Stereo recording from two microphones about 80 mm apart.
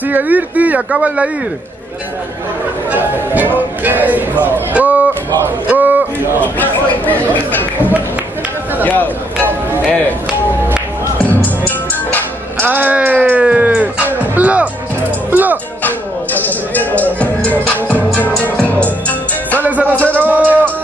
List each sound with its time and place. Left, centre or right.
0.1 s speech: right
2.9 s a sound: right
6.4 s chatter: left
8.8 s a sound: left
12.5 s music: right
16.3 s music: left
19.6 s music: centre
19.9 s music: centre
20.2 s music: right